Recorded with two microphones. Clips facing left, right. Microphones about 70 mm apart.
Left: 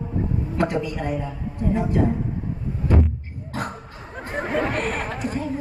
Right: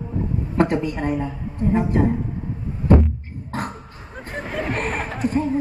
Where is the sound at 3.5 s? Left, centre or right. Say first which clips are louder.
Right 1 dB; right.